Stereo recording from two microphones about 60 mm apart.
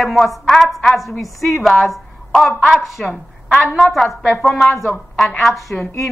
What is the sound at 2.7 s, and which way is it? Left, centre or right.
A woman's voice, centre.